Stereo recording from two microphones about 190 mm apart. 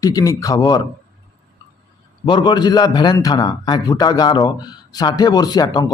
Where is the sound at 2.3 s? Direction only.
25° left (ahead or behind).